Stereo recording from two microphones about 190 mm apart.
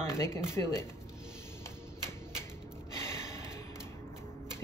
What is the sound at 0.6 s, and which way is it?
Speech, 10° left (ahead or behind).